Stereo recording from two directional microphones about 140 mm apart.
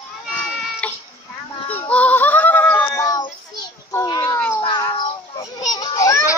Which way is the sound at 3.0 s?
25° left (ahead or behind).